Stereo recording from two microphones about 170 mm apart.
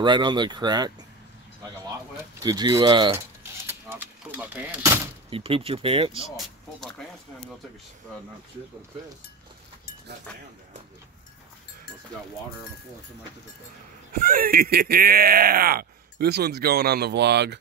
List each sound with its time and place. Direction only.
0.0 s speech: 25° right (ahead or behind)
2.4 s speech: 25° right (ahead or behind)
3.6 s speech: 10° right (ahead or behind)
5.3 s speech: 35° right (ahead or behind)
6.3 s speech: centre (ahead or behind)
14.1 s speech: 55° right (ahead or behind); by 17.6 s 80° right